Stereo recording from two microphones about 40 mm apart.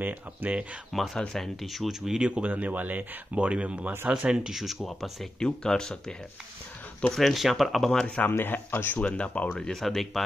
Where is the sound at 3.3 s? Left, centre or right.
Right.